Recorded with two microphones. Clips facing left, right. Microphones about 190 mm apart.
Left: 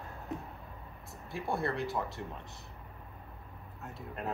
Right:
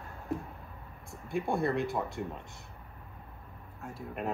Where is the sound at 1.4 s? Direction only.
Centre (ahead or behind).